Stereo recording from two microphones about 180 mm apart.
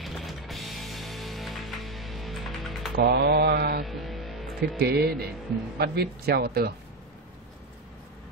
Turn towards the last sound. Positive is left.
turn(degrees=-60)  # may be behind; listen again after turning